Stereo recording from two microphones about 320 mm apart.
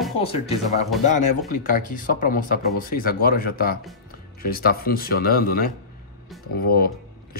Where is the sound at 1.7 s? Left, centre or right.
Left.